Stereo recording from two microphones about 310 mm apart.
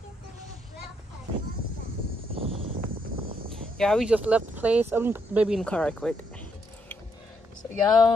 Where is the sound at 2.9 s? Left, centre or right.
Right.